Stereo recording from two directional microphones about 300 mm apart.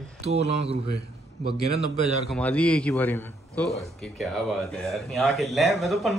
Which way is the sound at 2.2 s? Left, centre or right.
Centre.